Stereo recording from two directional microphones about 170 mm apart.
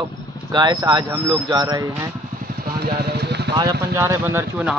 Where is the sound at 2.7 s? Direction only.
70° right (ahead or behind).